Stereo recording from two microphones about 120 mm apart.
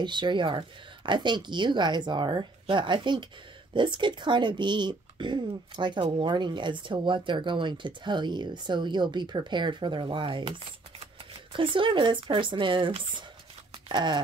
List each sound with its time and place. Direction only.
0.0 s speech: 40° right (ahead or behind)